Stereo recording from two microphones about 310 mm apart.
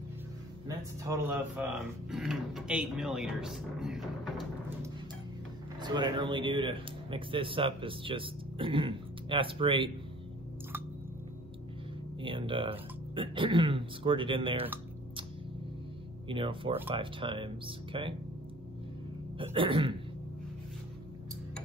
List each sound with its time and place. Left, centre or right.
0.7 s speech: centre
5.8 s speech: centre
12.2 s speech: centre
16.3 s speech: centre
19.3 s speech: centre